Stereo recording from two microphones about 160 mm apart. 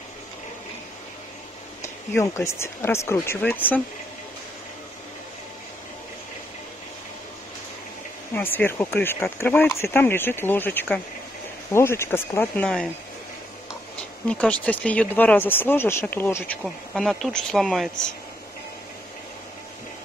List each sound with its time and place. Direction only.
1.8 s speech: 15° left (ahead or behind)
8.4 s speech: 15° left (ahead or behind)
14.2 s speech: 5° left (ahead or behind)
16.6 s speech: centre (ahead or behind)